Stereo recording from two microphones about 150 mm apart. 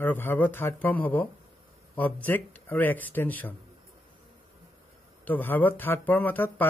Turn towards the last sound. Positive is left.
turn(degrees=10)  # may be behind; listen again after turning